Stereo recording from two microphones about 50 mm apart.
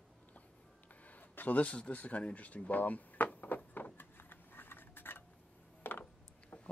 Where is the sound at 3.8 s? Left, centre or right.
Left.